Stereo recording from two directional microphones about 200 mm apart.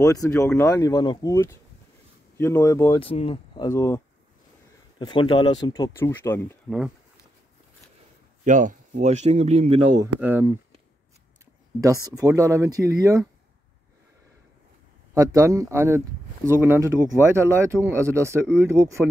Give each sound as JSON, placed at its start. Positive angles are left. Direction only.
{"t": 0.0, "sound": "speech", "side_deg": 15}
{"t": 3.0, "sound": "speech", "side_deg": 30}
{"t": 3.6, "sound": "speech", "side_deg": 15}
{"t": 8.5, "sound": "speech", "side_deg": -40}
{"t": 9.9, "sound": "speech", "side_deg": -10}
{"t": 11.8, "sound": "speech", "side_deg": -15}
{"t": 15.1, "sound": "speech", "side_deg": -15}